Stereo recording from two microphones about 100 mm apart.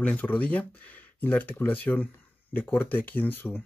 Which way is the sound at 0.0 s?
15° left (ahead or behind).